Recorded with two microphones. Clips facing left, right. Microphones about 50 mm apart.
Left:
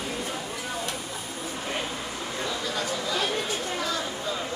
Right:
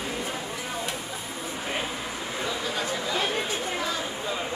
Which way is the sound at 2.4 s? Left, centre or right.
Centre.